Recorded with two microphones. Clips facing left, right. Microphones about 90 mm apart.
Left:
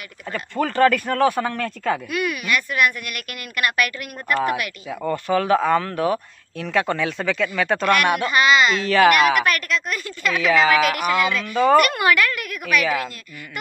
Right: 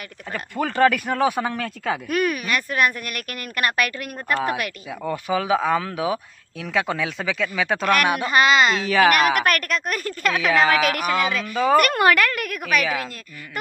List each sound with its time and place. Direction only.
0.3 s speech: 10° right (ahead or behind)
2.0 s speech: 45° right (ahead or behind)
4.8 s speech: 5° right (ahead or behind)
8.3 s speech: 40° right (ahead or behind)
8.7 s speech: 5° right (ahead or behind)
9.1 s speech: 50° right (ahead or behind)
10.4 s speech: centre (ahead or behind)
10.8 s speech: 45° right (ahead or behind)
11.5 s speech: centre (ahead or behind)
11.8 s speech: 45° right (ahead or behind)
12.8 s speech: centre (ahead or behind)